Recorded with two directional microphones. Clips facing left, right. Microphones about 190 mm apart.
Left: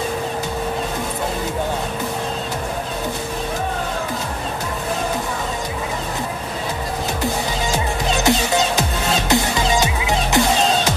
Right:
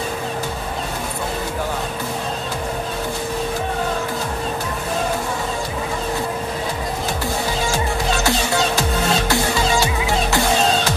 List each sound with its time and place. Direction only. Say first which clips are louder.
7.7 s music: even; 20° left (ahead or behind)